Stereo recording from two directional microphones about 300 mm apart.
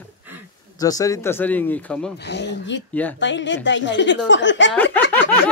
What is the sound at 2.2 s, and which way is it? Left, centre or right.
Speech, left.